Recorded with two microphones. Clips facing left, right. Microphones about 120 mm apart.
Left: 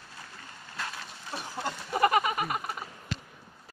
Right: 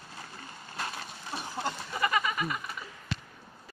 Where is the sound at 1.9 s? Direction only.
55° left (ahead or behind).